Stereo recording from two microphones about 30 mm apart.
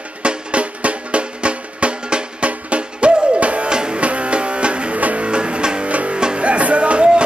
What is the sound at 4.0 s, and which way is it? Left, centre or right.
Music, right.